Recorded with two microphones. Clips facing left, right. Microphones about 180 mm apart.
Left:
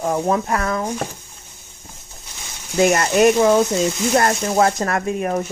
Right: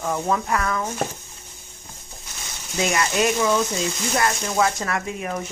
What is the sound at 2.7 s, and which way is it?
Speech, 50° left (ahead or behind).